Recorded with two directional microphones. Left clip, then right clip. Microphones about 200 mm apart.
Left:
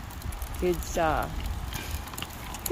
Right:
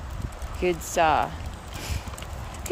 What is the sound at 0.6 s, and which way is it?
Speech, 15° right (ahead or behind).